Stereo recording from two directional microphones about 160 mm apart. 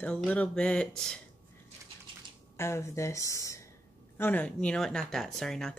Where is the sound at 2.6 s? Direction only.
15° left (ahead or behind).